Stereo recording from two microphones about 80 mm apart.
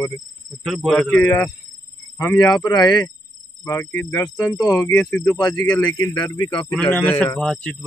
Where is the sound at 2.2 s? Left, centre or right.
Left.